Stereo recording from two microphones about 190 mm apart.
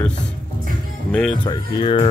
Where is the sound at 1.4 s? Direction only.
20° left (ahead or behind).